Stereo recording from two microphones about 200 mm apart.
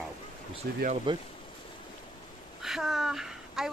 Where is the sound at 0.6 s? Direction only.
50° right (ahead or behind).